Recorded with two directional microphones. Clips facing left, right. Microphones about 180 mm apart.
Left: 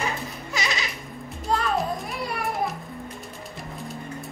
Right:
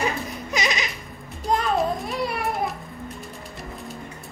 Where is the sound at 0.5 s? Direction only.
20° right (ahead or behind).